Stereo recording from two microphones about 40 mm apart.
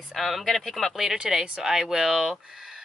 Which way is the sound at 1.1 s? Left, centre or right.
Centre.